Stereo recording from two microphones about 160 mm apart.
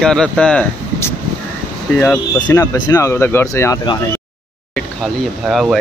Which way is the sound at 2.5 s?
20° left (ahead or behind).